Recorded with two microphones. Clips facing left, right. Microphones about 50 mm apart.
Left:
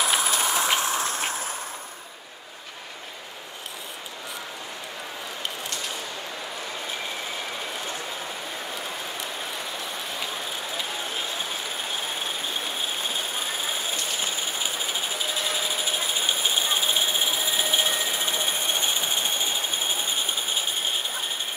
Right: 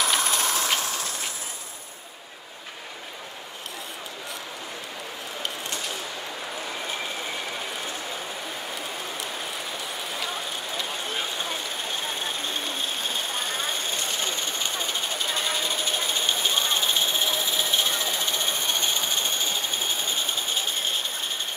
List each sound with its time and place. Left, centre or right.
0.0 s train: centre
0.6 s train: left
12.2 s vehicle: centre